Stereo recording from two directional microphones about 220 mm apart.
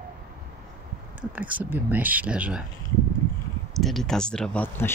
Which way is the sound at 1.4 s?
5° right (ahead or behind).